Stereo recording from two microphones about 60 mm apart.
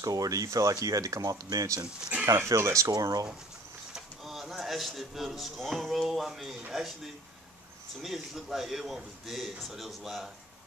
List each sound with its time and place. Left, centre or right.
0.0 s speech: right
2.2 s speech: right
3.9 s speech: centre
8.0 s speech: centre